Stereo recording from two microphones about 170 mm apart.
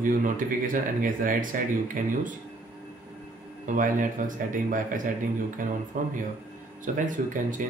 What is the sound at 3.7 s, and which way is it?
Speech, 50° right (ahead or behind).